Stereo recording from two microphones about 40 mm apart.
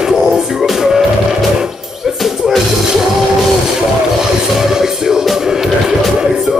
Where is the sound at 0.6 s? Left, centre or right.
Centre.